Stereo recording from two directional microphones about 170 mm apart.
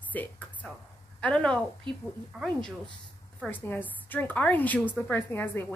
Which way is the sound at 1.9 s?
30° right (ahead or behind).